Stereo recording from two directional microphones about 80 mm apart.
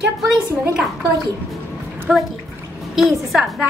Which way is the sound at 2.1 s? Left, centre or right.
Centre.